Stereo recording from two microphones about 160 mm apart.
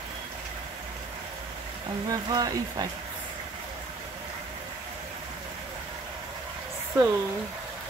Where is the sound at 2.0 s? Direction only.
25° right (ahead or behind).